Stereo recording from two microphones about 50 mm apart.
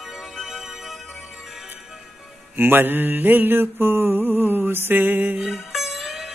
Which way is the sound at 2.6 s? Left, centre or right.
Right.